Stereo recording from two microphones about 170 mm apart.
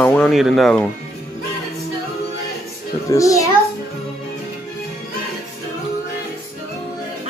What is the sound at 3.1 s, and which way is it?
Speech, 20° left (ahead or behind).